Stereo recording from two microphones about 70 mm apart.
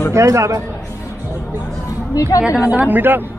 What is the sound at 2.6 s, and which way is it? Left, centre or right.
Speech, right.